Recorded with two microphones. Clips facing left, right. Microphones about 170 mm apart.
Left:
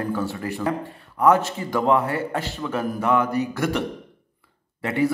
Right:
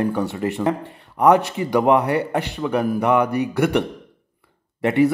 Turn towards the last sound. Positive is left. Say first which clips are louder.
# right 5 dB
turn(degrees=-20)  # may be behind; listen again after turning